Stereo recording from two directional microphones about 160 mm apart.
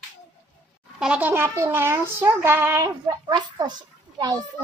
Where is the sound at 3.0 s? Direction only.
25° right (ahead or behind).